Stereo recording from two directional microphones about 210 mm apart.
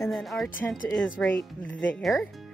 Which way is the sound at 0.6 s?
15° left (ahead or behind).